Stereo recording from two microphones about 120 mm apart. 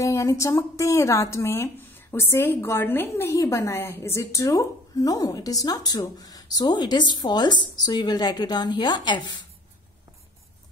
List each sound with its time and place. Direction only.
0.0 s speech: 25° left (ahead or behind)